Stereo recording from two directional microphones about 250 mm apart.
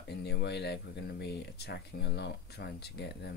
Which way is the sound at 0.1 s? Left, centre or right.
Left.